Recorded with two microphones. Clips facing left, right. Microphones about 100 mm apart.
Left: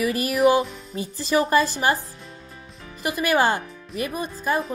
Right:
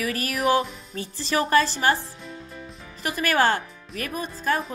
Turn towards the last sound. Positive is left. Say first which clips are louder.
# left 1 dB
turn(degrees=5)  # may be behind; listen again after turning